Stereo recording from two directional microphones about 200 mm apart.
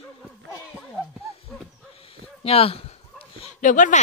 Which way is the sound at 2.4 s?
30° left (ahead or behind).